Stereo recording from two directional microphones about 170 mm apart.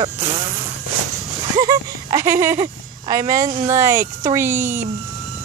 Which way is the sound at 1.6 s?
20° right (ahead or behind).